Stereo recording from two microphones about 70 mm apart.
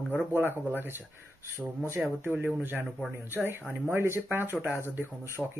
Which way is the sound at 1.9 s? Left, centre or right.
Right.